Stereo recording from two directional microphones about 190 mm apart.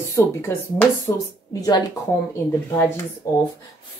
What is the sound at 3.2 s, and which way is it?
Speech, 15° left (ahead or behind).